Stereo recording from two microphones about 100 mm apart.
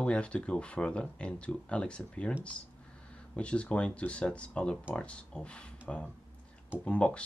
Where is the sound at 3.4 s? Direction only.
10° left (ahead or behind).